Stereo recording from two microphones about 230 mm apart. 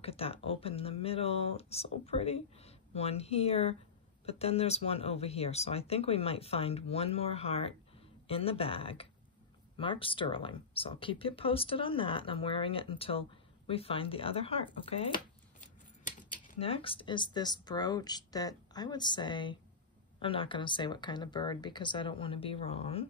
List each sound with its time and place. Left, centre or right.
0.0 s speech: left
16.0 s speech: left